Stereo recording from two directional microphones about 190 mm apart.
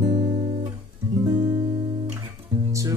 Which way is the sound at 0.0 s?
20° right (ahead or behind).